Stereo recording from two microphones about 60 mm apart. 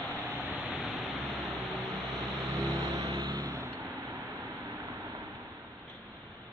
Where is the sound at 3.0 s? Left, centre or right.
Right.